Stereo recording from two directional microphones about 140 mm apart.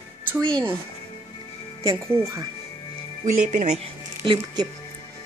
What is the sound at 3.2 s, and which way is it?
Speech, 60° right (ahead or behind).